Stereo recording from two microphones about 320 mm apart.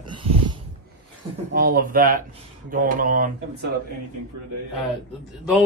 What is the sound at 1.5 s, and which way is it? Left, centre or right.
Speech, right.